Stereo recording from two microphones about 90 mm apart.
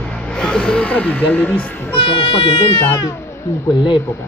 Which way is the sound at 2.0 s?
80° left.